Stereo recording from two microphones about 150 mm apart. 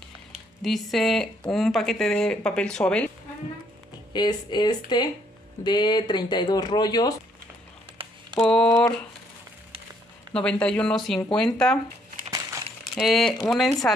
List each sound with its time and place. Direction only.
0.6 s speech: centre (ahead or behind)
4.1 s speech: 30° left (ahead or behind)
8.4 s speech: 5° left (ahead or behind)
10.3 s speech: 5° left (ahead or behind)
12.9 s speech: centre (ahead or behind)